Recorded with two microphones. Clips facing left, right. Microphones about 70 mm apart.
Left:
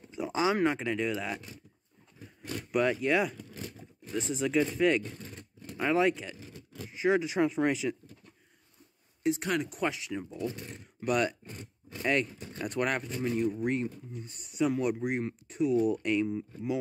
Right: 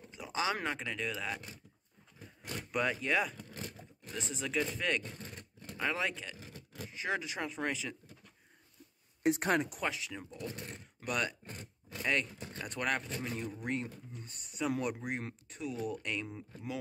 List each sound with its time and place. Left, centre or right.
0.1 s a sound: left
0.7 s speech: centre
2.7 s speech: centre
4.1 s speech: centre
9.2 s speech: right
9.8 s speech: centre
13.8 s speech: centre